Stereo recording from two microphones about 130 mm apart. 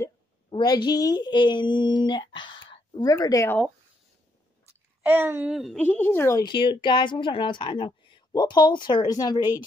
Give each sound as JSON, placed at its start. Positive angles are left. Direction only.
{"t": 0.5, "sound": "speech", "side_deg": 35}
{"t": 3.1, "sound": "speech", "side_deg": 25}
{"t": 5.0, "sound": "speech", "side_deg": -15}
{"t": 5.5, "sound": "a woman's voice", "side_deg": 0}
{"t": 5.8, "sound": "a woman's voice", "side_deg": 15}
{"t": 6.4, "sound": "a woman's voice", "side_deg": 35}